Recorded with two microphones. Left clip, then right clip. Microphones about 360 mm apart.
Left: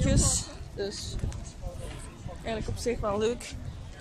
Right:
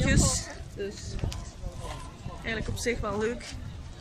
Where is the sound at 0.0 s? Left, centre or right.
Centre.